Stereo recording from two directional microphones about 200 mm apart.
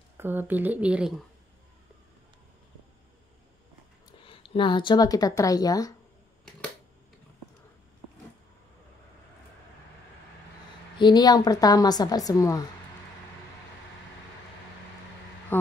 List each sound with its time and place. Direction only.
0.2 s speech: 10° right (ahead or behind)
4.3 s speech: 25° left (ahead or behind)
11.0 s speech: 20° left (ahead or behind)
15.5 s a sound: 10° left (ahead or behind)